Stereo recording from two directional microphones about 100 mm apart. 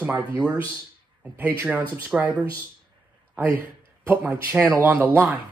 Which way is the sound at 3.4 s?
20° right (ahead or behind).